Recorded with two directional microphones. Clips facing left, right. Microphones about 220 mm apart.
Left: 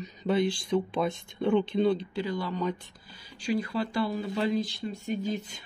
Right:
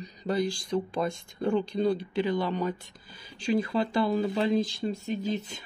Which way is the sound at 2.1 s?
20° right (ahead or behind).